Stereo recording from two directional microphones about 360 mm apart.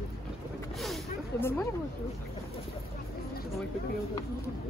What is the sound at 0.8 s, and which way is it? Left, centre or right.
Speech, centre.